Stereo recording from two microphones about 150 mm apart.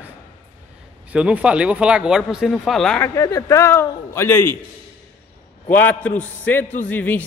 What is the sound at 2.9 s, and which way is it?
Speech, 20° left (ahead or behind).